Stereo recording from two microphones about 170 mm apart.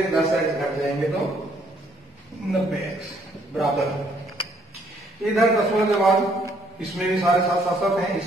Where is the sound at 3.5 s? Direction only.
Centre (ahead or behind).